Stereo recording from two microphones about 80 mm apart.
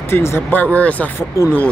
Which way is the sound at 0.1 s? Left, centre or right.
Left.